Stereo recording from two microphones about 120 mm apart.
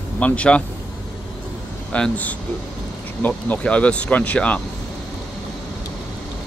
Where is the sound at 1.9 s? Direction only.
10° left (ahead or behind).